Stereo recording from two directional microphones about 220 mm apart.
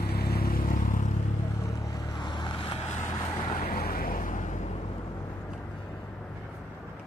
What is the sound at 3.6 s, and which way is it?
Vehicle, 45° left (ahead or behind).